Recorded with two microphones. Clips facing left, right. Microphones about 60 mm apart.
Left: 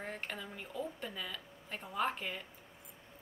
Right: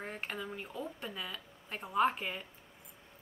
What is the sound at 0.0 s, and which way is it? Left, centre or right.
Speech, centre.